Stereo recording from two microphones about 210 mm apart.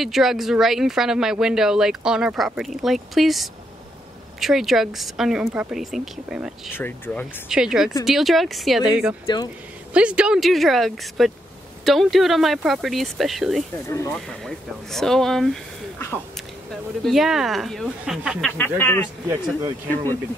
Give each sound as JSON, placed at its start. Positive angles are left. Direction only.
{"t": 0.0, "sound": "speech", "side_deg": 0}
{"t": 6.7, "sound": "speech", "side_deg": 10}
{"t": 7.4, "sound": "speech", "side_deg": -5}
{"t": 9.2, "sound": "speech", "side_deg": 20}
{"t": 9.9, "sound": "speech", "side_deg": -5}
{"t": 13.8, "sound": "speech", "side_deg": 15}
{"t": 14.1, "sound": "speech", "side_deg": 0}
{"t": 17.0, "sound": "speech", "side_deg": 0}
{"t": 18.6, "sound": "speech", "side_deg": 10}
{"t": 19.6, "sound": "speech", "side_deg": -15}